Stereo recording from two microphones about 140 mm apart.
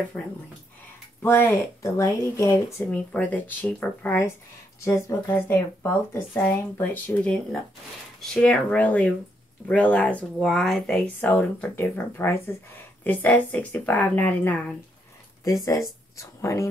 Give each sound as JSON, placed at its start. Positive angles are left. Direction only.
{"t": 1.2, "sound": "speech", "side_deg": 15}
{"t": 2.9, "sound": "speech", "side_deg": 10}
{"t": 16.2, "sound": "speech", "side_deg": 20}